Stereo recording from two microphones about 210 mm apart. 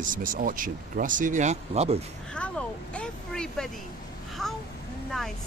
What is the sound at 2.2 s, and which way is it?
Speech, 5° left (ahead or behind).